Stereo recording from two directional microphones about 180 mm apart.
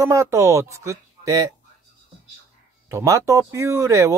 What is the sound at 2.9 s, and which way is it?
Speech, 15° right (ahead or behind).